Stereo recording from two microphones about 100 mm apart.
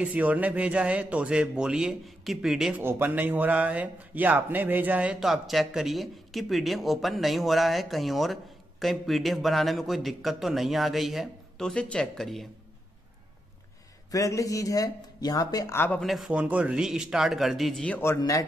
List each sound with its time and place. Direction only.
0.0 s a man's voice: 15° right (ahead or behind)
2.8 s a man's voice: 20° right (ahead or behind); by 12.4 s 5° left (ahead or behind)
14.1 s a man's voice: 35° left (ahead or behind)
15.7 s speech: 20° left (ahead or behind)
16.0 s a man's voice: centre (ahead or behind)
16.3 s a man's voice: 15° right (ahead or behind)
17.8 s speech: 20° left (ahead or behind)
18.1 s a man's voice: 30° left (ahead or behind)